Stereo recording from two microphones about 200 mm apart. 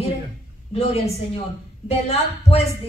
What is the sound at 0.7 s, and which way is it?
A woman's voice, 30° left (ahead or behind).